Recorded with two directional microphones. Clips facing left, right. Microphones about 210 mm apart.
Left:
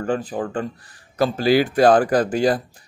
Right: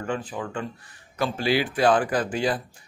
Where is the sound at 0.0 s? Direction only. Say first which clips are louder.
Left 6 dB; 35° left (ahead or behind).